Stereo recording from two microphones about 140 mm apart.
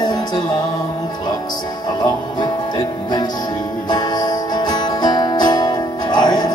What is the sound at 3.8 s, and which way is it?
Music, 30° left (ahead or behind).